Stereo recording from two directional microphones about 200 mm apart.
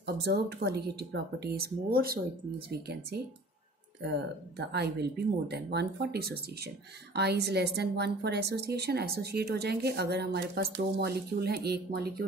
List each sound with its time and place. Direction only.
0.0 s a woman's voice: 55° right (ahead or behind)
4.6 s a woman's voice: 55° right (ahead or behind)